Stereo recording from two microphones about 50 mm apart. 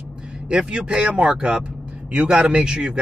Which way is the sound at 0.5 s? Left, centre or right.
Centre.